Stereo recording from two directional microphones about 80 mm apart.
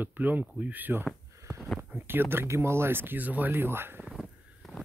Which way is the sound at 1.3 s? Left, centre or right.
Right.